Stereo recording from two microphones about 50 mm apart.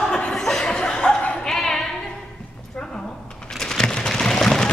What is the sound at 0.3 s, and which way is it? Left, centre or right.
Chuckle, centre.